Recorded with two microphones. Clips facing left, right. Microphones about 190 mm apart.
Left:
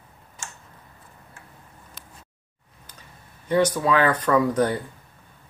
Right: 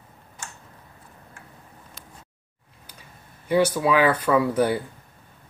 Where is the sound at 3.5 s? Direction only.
10° right (ahead or behind).